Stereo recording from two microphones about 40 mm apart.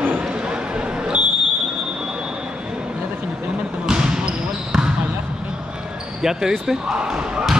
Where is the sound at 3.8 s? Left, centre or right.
Centre.